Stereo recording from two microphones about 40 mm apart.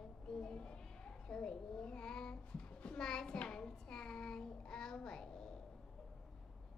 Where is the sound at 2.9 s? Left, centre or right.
Centre.